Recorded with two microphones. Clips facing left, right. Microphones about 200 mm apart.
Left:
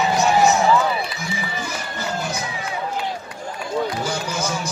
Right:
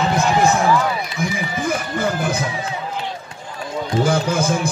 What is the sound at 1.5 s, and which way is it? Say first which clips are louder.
Music: right 7 dB; 55° right (ahead or behind).